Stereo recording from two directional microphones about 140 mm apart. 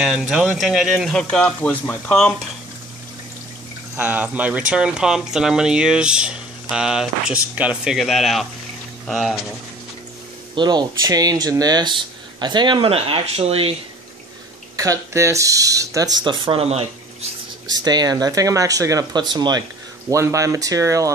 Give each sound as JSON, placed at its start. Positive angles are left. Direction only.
{"t": 0.0, "sound": "speech", "side_deg": -5}
{"t": 3.9, "sound": "speech", "side_deg": -10}
{"t": 10.5, "sound": "speech", "side_deg": -30}
{"t": 14.8, "sound": "speech", "side_deg": -20}
{"t": 17.8, "sound": "speech", "side_deg": -30}